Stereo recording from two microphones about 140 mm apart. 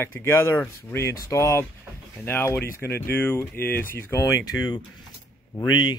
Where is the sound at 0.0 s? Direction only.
15° left (ahead or behind).